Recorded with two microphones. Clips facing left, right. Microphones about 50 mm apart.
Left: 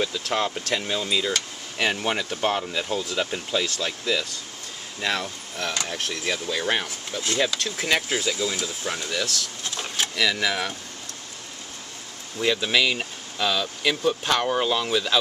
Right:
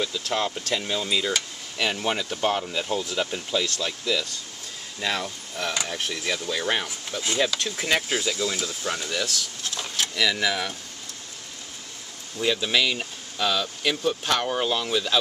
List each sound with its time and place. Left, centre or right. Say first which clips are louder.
0.0 s speech: left 1 dB; centre
1.1 s speech: even; centre
1.8 s speech: left 1 dB; centre
5.0 s speech: left 1 dB; centre
6.2 s speech: left 1 dB; centre
12.4 s speech: left 1 dB; centre